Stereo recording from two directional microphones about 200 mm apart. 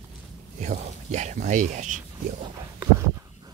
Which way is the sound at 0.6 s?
35° right (ahead or behind).